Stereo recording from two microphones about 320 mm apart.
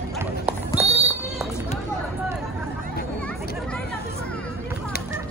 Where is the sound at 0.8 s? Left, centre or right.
Centre.